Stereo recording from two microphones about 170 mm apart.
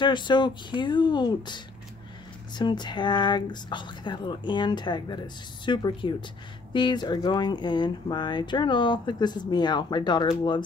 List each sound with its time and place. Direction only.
0.0 s speech: 25° left (ahead or behind)